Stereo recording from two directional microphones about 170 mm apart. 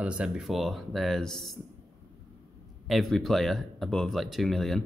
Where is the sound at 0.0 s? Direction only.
5° right (ahead or behind).